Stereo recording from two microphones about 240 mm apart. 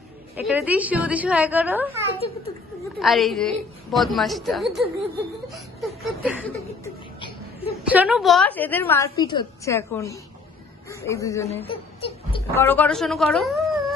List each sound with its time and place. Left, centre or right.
0.4 s a child's voice: centre
2.1 s a child's voice: left
3.0 s a woman's voice: centre
5.5 s a sound: centre
7.2 s a sound: left
7.9 s a woman's voice: centre
11.4 s whimper: left
12.5 s speech: centre